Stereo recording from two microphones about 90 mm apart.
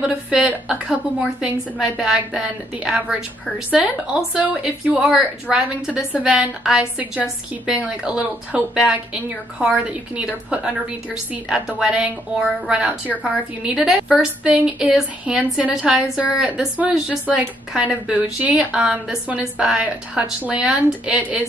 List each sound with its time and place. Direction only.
0.0 s a woman's voice: 10° right (ahead or behind)
7.0 s a woman's voice: 20° right (ahead or behind)